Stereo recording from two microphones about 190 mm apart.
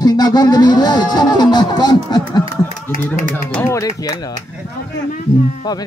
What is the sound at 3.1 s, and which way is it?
Speech, 10° left (ahead or behind).